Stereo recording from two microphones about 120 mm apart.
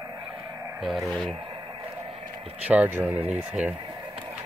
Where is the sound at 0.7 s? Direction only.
Centre (ahead or behind).